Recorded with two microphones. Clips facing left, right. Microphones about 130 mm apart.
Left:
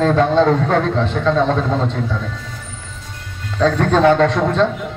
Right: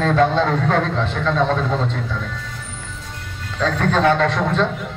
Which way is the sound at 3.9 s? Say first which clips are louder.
Left 3 dB; 20° left (ahead or behind).